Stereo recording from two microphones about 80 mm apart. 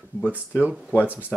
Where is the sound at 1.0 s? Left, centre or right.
Centre.